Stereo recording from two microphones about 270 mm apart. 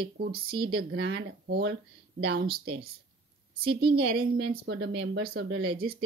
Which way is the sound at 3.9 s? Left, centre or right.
Right.